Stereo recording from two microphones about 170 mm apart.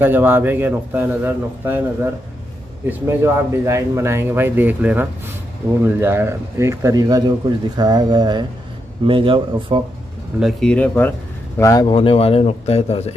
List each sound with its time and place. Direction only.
0.0 s speech: 10° right (ahead or behind)
2.9 s a man's voice: 10° right (ahead or behind); by 9.8 s 30° right (ahead or behind)
10.4 s speech: 5° left (ahead or behind); by 13.1 s 40° left (ahead or behind)